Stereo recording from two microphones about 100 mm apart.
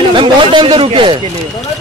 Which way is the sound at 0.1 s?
55° right (ahead or behind).